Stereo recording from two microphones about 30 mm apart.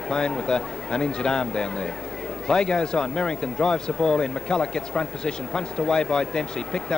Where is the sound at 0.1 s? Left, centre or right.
Left.